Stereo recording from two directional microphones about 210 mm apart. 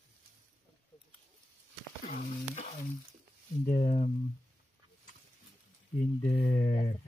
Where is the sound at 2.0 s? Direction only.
40° left (ahead or behind).